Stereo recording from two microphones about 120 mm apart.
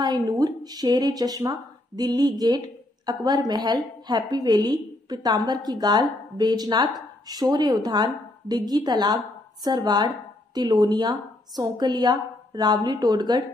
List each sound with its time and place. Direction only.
0.0 s a woman's voice: 35° right (ahead or behind)